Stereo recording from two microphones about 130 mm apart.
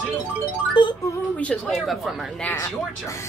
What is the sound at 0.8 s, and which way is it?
Music, 40° left (ahead or behind).